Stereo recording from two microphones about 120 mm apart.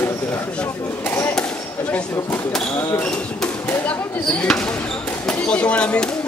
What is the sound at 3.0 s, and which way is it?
Speech, 10° left (ahead or behind).